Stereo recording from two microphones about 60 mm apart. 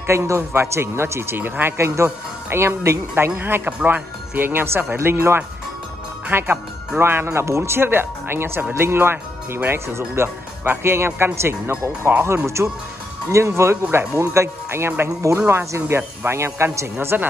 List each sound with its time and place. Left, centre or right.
0.0 s a man's voice: right